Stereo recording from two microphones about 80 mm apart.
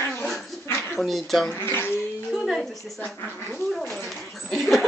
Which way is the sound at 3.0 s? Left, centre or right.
Left.